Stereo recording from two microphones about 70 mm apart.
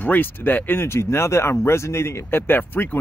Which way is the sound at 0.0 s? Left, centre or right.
Left.